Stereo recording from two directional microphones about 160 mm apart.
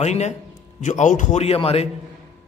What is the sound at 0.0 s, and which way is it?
A man's voice, 45° left (ahead or behind).